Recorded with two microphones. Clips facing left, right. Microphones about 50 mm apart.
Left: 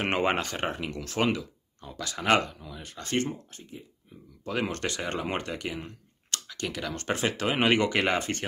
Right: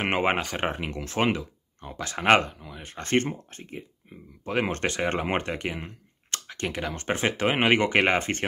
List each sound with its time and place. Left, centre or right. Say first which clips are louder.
0.1 s speech: right 2 dB; centre
0.7 s speech: right 2 dB; right
2.5 s speech: right 2 dB; right
4.5 s speech: right 3 dB; right